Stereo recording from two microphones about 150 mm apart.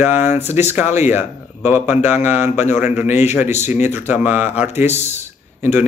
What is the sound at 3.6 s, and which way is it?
Speech, 15° right (ahead or behind).